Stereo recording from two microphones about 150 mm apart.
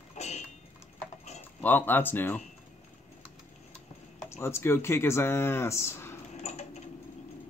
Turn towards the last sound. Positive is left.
turn(degrees=45)  # may be behind; listen again after turning